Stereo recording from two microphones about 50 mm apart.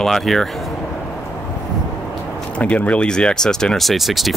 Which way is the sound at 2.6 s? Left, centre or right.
Left.